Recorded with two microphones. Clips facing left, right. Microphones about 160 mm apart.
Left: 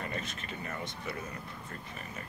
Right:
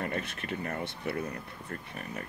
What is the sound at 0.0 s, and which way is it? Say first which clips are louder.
Speech: right 4 dB; 60° right (ahead or behind).